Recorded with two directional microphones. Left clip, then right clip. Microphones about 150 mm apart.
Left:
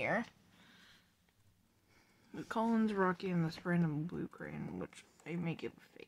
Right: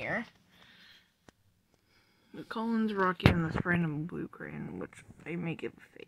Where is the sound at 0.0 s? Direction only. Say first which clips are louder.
Right 1 dB; 10° right (ahead or behind).